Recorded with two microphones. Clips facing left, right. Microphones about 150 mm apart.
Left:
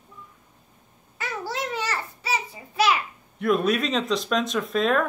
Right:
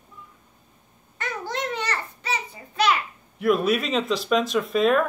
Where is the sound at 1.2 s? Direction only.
5° left (ahead or behind).